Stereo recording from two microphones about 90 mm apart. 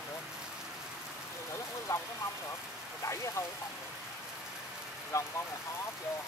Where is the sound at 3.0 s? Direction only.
35° left (ahead or behind).